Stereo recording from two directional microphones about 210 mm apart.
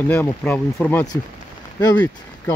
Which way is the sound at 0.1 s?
5° left (ahead or behind).